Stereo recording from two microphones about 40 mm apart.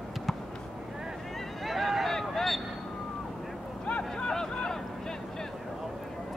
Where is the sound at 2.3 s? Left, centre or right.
Centre.